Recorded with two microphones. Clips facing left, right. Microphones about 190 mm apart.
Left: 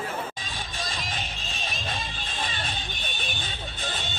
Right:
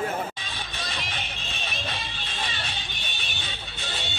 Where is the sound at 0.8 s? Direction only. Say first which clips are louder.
Left 1 dB; 40° left (ahead or behind).